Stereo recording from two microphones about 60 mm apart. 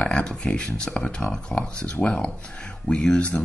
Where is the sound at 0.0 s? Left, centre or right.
Centre.